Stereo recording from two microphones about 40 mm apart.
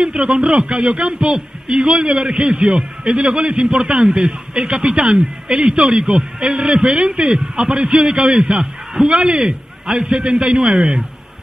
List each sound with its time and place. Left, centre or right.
0.0 s speech: centre
2.8 s a man's voice: centre